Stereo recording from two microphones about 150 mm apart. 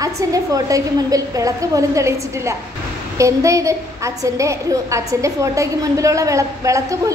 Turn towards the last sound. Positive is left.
turn(degrees=-20)  # may be behind; listen again after turning